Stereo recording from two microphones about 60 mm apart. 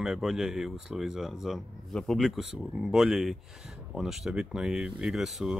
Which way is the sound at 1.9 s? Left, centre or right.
Centre.